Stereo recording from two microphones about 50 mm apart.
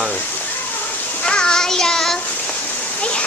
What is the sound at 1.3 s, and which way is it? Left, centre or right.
Child singing, centre.